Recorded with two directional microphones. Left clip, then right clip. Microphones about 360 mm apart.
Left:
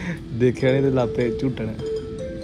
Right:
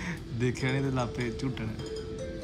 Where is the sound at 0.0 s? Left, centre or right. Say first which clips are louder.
Left 11 dB; centre.